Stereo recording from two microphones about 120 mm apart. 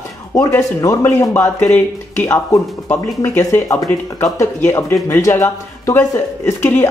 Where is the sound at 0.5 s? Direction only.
25° left (ahead or behind).